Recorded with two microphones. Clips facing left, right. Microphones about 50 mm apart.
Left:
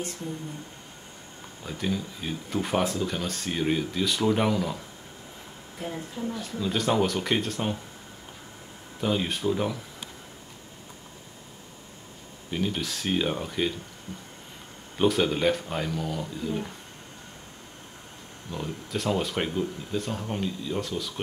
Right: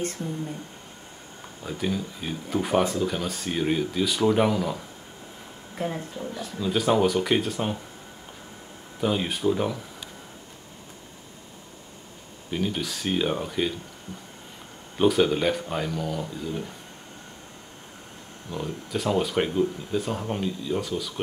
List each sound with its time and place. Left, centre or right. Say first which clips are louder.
1.6 s speech: right 2 dB; centre
6.3 s speech: right 4 dB; centre
9.0 s speech: right 2 dB; centre
12.4 s speech: right 1 dB; centre
15.0 s speech: right 3 dB; centre
18.5 s speech: right 2 dB; centre